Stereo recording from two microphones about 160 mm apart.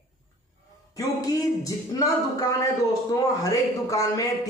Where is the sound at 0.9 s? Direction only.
20° left (ahead or behind).